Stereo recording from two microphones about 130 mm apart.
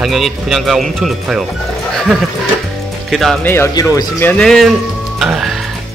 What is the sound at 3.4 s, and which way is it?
Speech, 20° left (ahead or behind).